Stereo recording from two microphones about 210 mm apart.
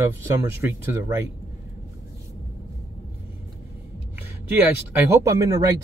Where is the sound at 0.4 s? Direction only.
10° right (ahead or behind).